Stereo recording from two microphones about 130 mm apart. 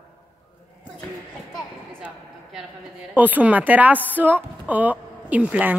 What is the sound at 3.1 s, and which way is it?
A woman's voice, 10° right (ahead or behind).